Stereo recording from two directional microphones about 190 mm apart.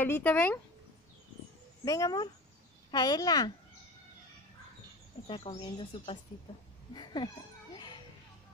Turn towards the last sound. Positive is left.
turn(degrees=25)  # may be behind; listen again after turning